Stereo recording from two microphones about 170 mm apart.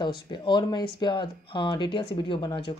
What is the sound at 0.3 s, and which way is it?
Speech, 25° left (ahead or behind).